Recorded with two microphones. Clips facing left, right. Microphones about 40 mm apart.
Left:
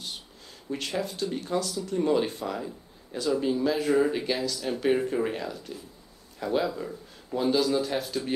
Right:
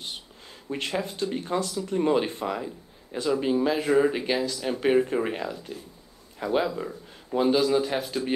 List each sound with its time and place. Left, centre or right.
0.7 s speech: right